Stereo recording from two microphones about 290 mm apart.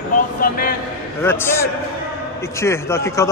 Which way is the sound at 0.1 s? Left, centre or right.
Left.